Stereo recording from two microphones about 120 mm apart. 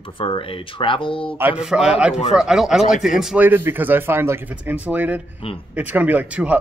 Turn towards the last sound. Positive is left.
turn(degrees=-15)  # may be behind; listen again after turning